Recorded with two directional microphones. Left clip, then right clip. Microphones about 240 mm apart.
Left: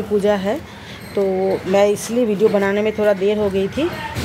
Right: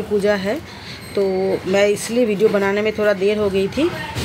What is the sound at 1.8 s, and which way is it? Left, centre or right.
Speech, left.